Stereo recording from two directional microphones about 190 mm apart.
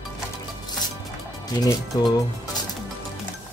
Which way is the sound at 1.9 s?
20° left (ahead or behind).